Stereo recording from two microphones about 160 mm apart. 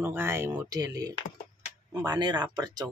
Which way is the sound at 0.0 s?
15° right (ahead or behind).